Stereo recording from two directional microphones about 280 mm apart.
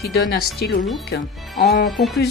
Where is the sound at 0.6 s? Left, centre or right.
Left.